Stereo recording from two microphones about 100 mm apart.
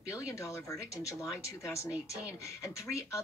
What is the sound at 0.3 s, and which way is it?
Speech, 30° left (ahead or behind).